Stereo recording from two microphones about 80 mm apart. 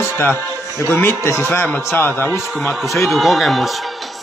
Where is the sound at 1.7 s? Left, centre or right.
Left.